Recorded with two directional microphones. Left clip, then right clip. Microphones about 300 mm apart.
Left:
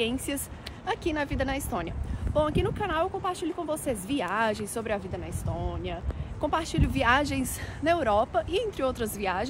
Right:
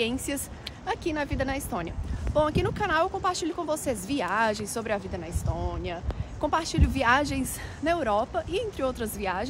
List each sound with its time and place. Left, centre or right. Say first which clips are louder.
0.0 s speech: right 1 dB; centre